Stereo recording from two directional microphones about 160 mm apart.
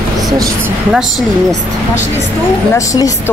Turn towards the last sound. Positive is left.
turn(degrees=20)  # may be behind; listen again after turning